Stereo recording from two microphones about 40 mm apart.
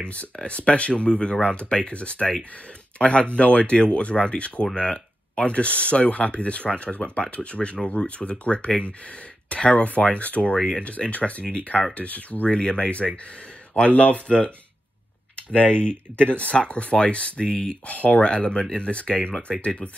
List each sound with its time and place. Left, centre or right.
0.0 s speech: left
10.8 s speech: left
17.5 s speech: centre
17.8 s speech: left
18.2 s speech: left